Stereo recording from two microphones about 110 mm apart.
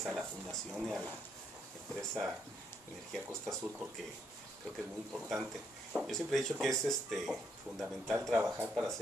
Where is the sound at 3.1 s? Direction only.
5° left (ahead or behind).